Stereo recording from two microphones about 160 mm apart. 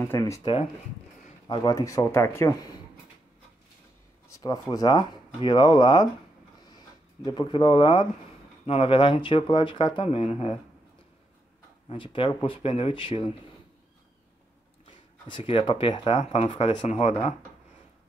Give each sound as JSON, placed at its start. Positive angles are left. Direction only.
{"t": 0.0, "sound": "speech", "side_deg": 15}
{"t": 0.4, "sound": "speech", "side_deg": 35}
{"t": 4.4, "sound": "speech", "side_deg": 25}
{"t": 7.2, "sound": "speech", "side_deg": 30}
{"t": 11.9, "sound": "speech", "side_deg": 30}
{"t": 15.2, "sound": "speech", "side_deg": 30}